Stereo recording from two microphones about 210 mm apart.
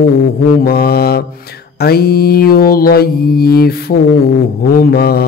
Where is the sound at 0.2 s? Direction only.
45° left (ahead or behind).